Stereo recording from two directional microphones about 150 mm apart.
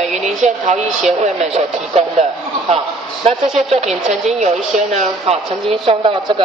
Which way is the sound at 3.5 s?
45° right (ahead or behind).